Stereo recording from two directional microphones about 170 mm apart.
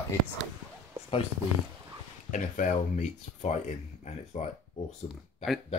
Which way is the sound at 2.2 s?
50° left (ahead or behind).